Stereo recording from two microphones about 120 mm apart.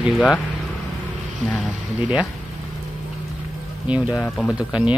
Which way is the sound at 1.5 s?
5° right (ahead or behind).